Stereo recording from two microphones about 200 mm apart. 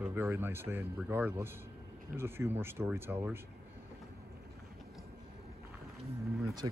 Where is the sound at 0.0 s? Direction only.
10° right (ahead or behind).